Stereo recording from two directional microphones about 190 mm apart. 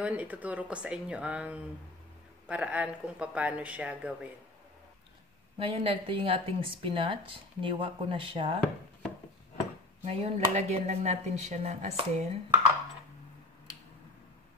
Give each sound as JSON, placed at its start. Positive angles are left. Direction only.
{"t": 0.0, "sound": "speech", "side_deg": -5}
{"t": 5.6, "sound": "speech", "side_deg": -30}
{"t": 10.0, "sound": "speech", "side_deg": -35}